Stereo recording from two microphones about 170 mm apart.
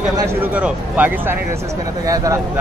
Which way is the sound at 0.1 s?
20° right (ahead or behind).